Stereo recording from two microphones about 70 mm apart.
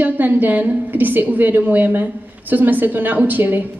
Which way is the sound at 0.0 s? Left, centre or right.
Right.